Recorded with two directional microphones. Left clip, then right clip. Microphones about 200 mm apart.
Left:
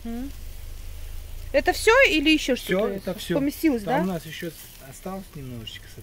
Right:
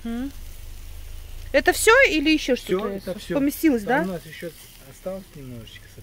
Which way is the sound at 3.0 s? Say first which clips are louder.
Left 1 dB; 60° left (ahead or behind).